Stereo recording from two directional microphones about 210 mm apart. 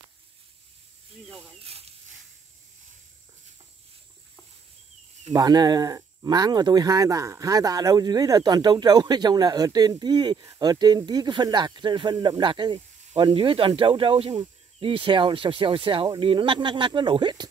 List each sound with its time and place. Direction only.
1.6 s speech: 30° right (ahead or behind)
5.3 s speech: 20° right (ahead or behind)